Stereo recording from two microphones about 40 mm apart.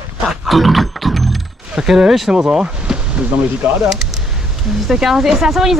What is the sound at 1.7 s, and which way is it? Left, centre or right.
Speech, centre.